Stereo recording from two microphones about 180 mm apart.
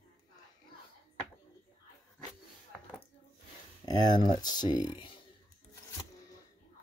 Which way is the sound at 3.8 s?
20° left (ahead or behind).